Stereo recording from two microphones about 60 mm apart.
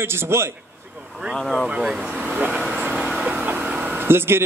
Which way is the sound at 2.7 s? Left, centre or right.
Right.